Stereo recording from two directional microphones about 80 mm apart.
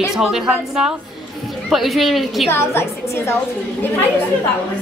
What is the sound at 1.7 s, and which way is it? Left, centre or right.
Speech, centre.